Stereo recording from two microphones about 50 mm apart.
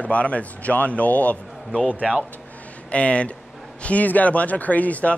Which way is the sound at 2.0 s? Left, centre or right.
Centre.